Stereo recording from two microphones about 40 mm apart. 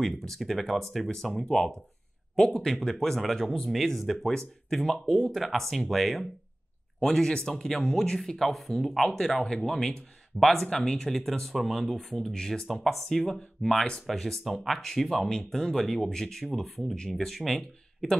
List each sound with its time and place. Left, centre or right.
0.3 s speech: centre
5.4 s speech: centre
7.0 s speech: centre
7.7 s speech: centre
9.3 s speech: centre
14.4 s speech: centre
14.7 s speech: centre
15.2 s speech: centre